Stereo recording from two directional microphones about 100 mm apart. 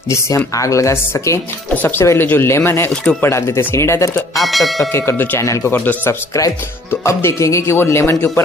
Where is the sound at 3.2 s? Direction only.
25° left (ahead or behind).